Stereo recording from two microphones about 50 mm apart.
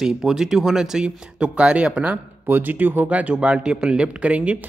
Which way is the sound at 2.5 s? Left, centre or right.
Right.